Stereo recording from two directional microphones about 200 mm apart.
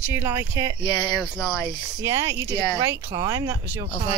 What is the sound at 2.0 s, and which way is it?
Speech, 15° right (ahead or behind).